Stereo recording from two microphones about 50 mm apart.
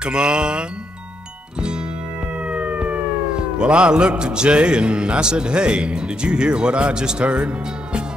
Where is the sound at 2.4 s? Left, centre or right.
Right.